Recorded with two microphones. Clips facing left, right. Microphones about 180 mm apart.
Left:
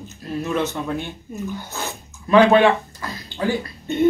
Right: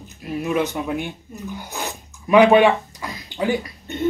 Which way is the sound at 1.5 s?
15° right (ahead or behind).